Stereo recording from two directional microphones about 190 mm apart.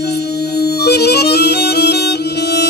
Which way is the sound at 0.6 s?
60° left (ahead or behind).